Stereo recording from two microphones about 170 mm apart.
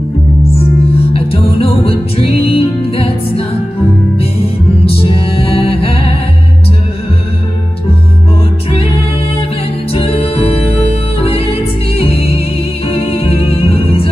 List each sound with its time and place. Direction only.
0.4 s music: 35° left (ahead or behind)
4.8 s music: 35° left (ahead or behind)
9.9 s music: 35° left (ahead or behind)